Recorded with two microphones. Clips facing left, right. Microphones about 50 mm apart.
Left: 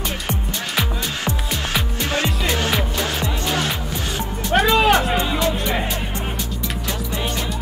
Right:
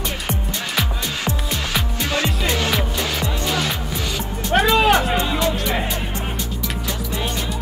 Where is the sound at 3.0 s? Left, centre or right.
Left.